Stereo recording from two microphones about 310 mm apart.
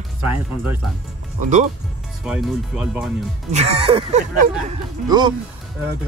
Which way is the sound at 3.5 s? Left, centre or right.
Right.